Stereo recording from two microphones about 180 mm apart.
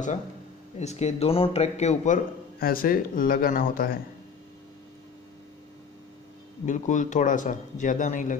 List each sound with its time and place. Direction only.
0.7 s a man's voice: 40° left (ahead or behind)
6.6 s a man's voice: 45° left (ahead or behind)